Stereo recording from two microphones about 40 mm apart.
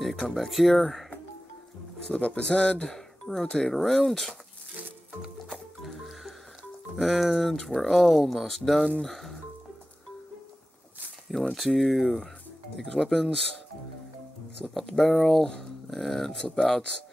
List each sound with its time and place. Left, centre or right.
0.0 s a sound: centre
0.3 s speech: centre
2.0 s speech: left
2.9 s speech: centre
5.5 s music: centre
7.0 s speech: centre
11.5 s speech: centre
14.7 s speech: centre
15.9 s speech: centre